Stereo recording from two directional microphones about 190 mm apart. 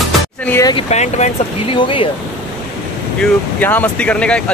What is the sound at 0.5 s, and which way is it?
Speech, 15° left (ahead or behind).